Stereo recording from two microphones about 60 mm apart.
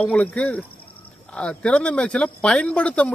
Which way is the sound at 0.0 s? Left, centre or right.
Left.